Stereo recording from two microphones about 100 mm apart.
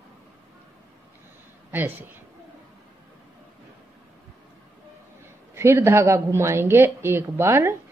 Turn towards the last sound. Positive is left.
turn(degrees=-25)  # may be behind; listen again after turning